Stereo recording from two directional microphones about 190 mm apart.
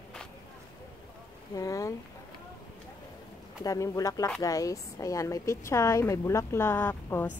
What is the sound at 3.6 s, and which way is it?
A woman's voice, 20° left (ahead or behind).